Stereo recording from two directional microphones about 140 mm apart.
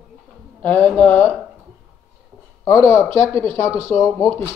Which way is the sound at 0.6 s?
10° left (ahead or behind).